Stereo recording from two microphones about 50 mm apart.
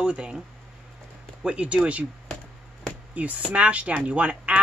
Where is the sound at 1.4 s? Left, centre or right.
Right.